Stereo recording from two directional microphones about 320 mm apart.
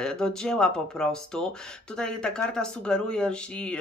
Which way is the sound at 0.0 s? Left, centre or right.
Centre.